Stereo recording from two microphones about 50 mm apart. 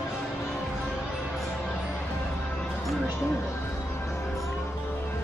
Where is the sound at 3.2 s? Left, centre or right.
Left.